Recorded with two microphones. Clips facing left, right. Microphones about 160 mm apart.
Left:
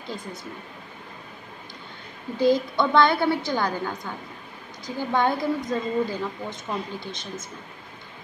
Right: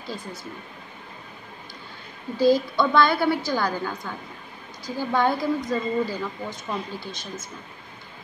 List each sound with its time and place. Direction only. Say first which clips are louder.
0.0 s a woman's voice: even; 20° left (ahead or behind)
2.3 s a woman's voice: right 1 dB; 20° left (ahead or behind)